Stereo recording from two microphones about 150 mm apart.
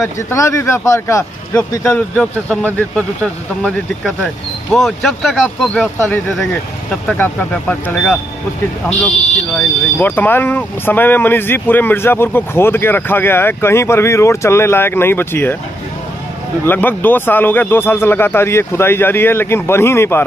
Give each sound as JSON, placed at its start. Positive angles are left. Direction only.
{"t": 0.3, "sound": "speech", "side_deg": 20}
{"t": 1.9, "sound": "speech", "side_deg": 10}
{"t": 5.9, "sound": "speech", "side_deg": 15}
{"t": 9.9, "sound": "speech", "side_deg": 15}
{"t": 16.6, "sound": "speech", "side_deg": 15}